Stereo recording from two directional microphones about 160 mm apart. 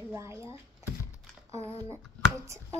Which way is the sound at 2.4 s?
20° right (ahead or behind).